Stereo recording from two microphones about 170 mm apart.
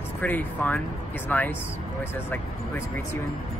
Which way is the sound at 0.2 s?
10° left (ahead or behind).